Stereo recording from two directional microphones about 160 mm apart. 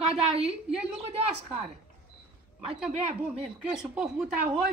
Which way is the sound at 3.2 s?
5° right (ahead or behind).